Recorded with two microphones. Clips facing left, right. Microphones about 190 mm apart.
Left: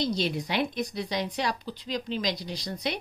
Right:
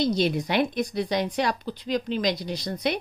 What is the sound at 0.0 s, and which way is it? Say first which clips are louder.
A woman's voice: right 5 dB; 55° right (ahead or behind).